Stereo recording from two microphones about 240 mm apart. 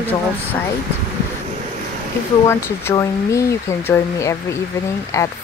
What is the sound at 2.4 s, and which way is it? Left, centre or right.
Speech, centre.